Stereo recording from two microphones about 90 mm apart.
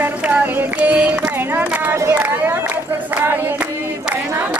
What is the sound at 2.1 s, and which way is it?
Run, 20° right (ahead or behind).